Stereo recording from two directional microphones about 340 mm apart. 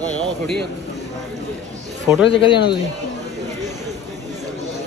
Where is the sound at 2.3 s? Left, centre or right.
Centre.